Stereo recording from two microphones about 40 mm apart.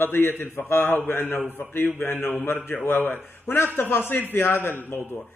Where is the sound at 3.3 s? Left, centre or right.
Left.